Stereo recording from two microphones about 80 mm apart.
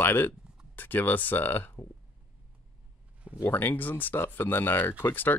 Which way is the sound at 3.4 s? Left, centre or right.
Left.